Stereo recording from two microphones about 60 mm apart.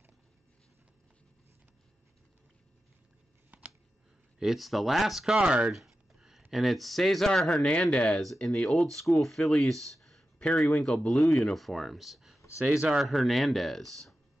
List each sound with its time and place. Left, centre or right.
3.5 s a sound: right
4.4 s speech: centre
5.7 s speech: centre
6.1 s a sound: centre
6.5 s speech: centre
8.6 s speech: centre
12.6 s speech: right
12.9 s speech: centre